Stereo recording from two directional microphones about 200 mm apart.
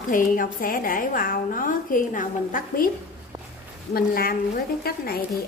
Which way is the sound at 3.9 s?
50° left (ahead or behind).